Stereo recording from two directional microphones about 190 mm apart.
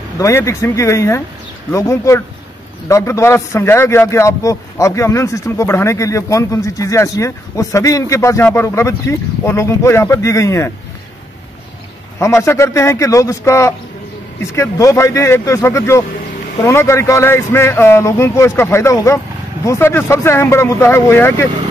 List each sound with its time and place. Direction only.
0.2 s a man's voice: 15° left (ahead or behind)
12.2 s a man's voice: 15° left (ahead or behind)